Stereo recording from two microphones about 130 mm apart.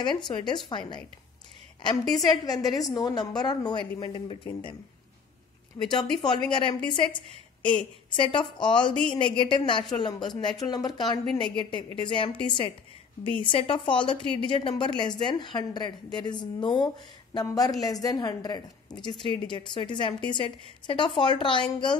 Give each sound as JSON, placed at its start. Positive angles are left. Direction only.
{"t": 0.0, "sound": "a woman's voice", "side_deg": 35}
{"t": 2.4, "sound": "a woman's voice", "side_deg": 30}
{"t": 5.8, "sound": "a woman's voice", "side_deg": 30}